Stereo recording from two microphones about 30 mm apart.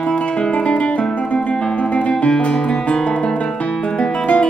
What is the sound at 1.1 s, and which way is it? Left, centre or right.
Music, left.